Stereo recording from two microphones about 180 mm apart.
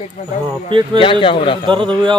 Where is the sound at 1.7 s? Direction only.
25° right (ahead or behind).